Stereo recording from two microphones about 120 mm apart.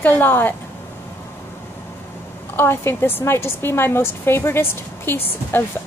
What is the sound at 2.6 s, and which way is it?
A woman's voice, 20° left (ahead or behind).